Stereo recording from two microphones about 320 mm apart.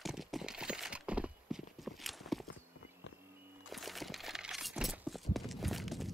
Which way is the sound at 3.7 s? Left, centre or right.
Centre.